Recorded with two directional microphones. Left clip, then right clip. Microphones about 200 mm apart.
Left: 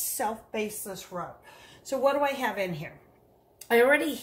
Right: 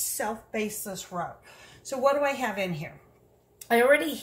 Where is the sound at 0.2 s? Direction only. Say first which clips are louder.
Left 1 dB; 10° left (ahead or behind).